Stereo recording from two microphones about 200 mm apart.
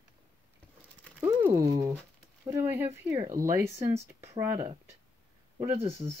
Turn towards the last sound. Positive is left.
turn(degrees=-30)  # may be behind; listen again after turning